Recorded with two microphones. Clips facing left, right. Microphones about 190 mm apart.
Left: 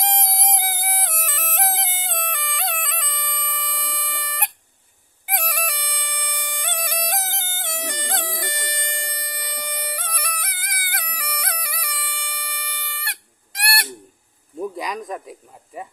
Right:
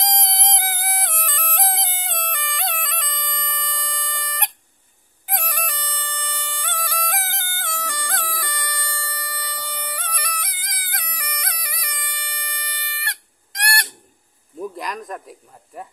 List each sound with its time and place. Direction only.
0.0 s music: 10° left (ahead or behind)
13.7 s owl: 5° left (ahead or behind)
14.8 s speech: centre (ahead or behind)